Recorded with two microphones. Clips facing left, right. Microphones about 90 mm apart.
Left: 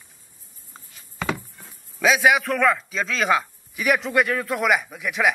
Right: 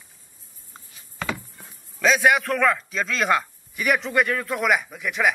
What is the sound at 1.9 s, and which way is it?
A man's voice, 5° left (ahead or behind).